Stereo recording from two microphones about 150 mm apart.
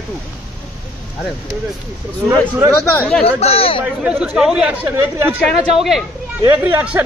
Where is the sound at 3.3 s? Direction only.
40° left (ahead or behind).